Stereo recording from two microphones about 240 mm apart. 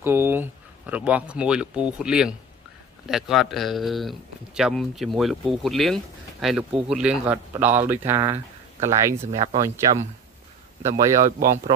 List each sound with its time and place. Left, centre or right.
0.0 s speech: centre
9.2 s speech: right
11.2 s speech: right